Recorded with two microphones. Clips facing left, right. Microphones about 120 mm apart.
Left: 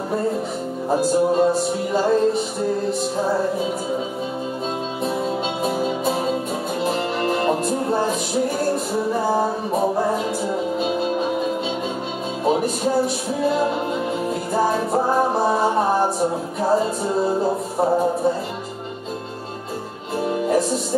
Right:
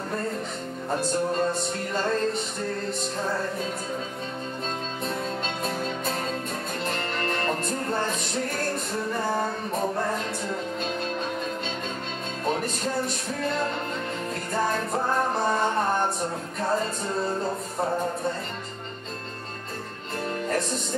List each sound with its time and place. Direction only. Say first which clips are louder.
0.9 s music: left 8 dB; 5° left (ahead or behind)
5.6 s music: left 8 dB; 10° left (ahead or behind)
17.5 s music: left 8 dB; 30° left (ahead or behind)
20.2 s music: left 8 dB; 10° left (ahead or behind)